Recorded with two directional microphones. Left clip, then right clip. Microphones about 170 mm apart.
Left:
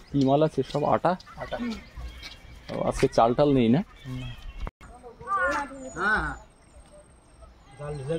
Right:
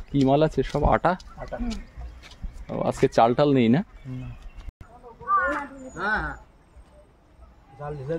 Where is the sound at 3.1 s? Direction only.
25° right (ahead or behind).